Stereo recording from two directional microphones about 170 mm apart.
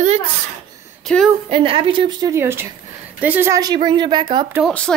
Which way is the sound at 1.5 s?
30° right (ahead or behind).